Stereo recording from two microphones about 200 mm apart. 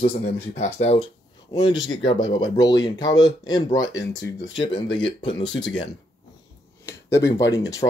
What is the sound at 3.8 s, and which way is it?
Speech, 65° left (ahead or behind).